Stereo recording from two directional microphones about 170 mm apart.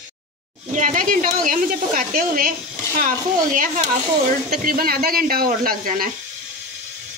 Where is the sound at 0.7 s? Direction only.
50° right (ahead or behind).